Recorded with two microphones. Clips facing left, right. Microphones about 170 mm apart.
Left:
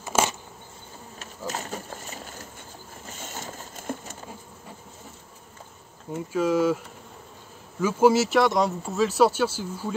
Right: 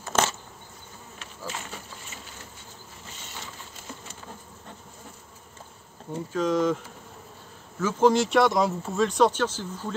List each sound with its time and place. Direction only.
0.0 s insect: 10° left (ahead or behind)
1.5 s a sound: 40° left (ahead or behind)
6.1 s speech: 10° left (ahead or behind)
7.8 s speech: 5° left (ahead or behind)